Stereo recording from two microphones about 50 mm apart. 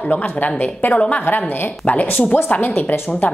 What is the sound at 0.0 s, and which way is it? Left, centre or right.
A woman's voice, left.